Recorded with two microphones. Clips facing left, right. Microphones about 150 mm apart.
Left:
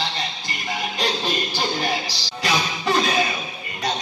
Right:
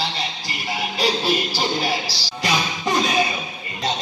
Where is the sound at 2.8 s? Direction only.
20° right (ahead or behind).